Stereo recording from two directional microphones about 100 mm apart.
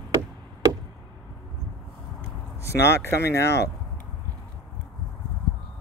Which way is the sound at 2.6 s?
30° left (ahead or behind).